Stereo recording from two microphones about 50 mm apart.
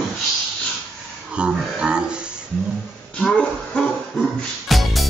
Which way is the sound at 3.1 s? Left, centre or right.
Centre.